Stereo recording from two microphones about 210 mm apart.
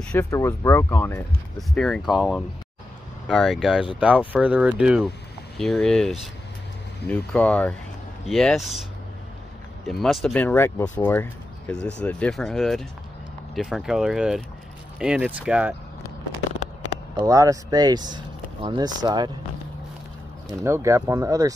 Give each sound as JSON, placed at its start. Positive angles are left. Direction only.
{"t": 0.0, "sound": "speech", "side_deg": 10}
{"t": 9.8, "sound": "speech", "side_deg": 0}
{"t": 17.2, "sound": "speech", "side_deg": -15}
{"t": 20.4, "sound": "speech", "side_deg": -15}